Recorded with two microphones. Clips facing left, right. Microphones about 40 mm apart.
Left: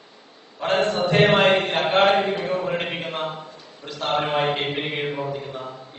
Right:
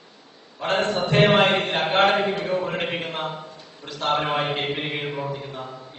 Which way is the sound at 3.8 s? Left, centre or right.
Centre.